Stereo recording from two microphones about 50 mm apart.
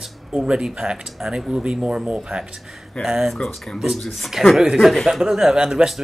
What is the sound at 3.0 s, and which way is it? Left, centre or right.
Speech, centre.